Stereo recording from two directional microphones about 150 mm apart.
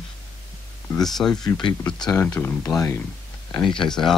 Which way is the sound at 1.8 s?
5° left (ahead or behind).